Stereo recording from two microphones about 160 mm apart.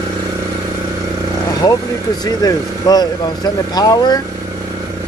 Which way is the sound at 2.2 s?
25° left (ahead or behind).